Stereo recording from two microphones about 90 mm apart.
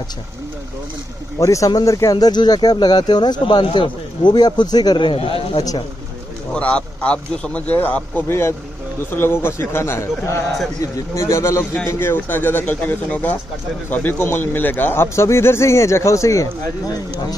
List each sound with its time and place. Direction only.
1.4 s speech: 35° left (ahead or behind); by 3.6 s 55° left (ahead or behind)
3.6 s speech: 65° left (ahead or behind); by 5.6 s 85° left
6.5 s a man's voice: 10° left (ahead or behind); by 17.0 s 40° left (ahead or behind)